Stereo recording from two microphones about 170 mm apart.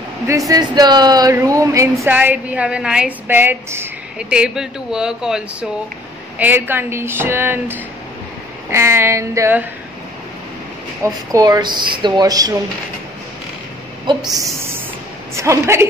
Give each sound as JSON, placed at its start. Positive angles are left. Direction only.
{"t": 0.5, "sound": "speech", "side_deg": -25}
{"t": 11.0, "sound": "speech", "side_deg": -20}
{"t": 14.3, "sound": "speech", "side_deg": -15}